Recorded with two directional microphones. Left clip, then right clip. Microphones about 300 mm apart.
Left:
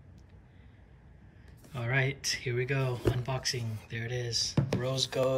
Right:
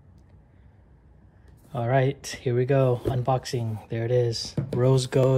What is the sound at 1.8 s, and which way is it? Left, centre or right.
Speech, centre.